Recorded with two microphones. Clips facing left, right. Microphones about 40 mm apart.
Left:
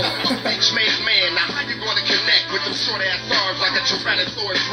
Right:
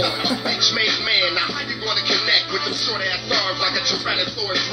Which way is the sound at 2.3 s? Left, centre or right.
Centre.